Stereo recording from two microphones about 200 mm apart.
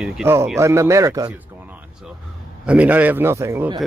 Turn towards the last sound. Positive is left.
turn(degrees=-15)  # may be behind; listen again after turning